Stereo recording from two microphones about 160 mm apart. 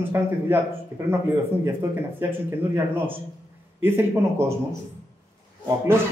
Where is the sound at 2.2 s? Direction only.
15° right (ahead or behind).